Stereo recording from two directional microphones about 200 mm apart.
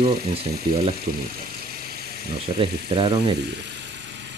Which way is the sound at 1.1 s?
45° right (ahead or behind).